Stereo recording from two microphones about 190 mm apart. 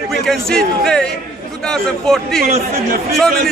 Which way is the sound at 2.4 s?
45° right (ahead or behind).